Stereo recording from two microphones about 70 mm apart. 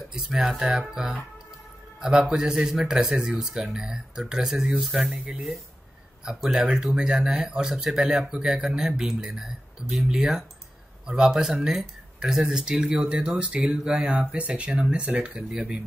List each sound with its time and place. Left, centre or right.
0.1 s speech: centre
5.0 s speech: centre